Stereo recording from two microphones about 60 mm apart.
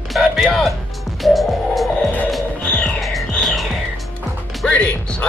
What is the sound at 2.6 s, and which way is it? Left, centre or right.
Music, left.